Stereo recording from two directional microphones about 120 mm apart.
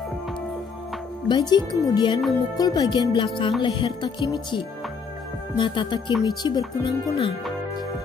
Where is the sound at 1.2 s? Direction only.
40° left (ahead or behind).